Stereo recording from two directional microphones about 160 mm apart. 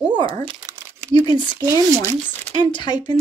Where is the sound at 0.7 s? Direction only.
20° right (ahead or behind).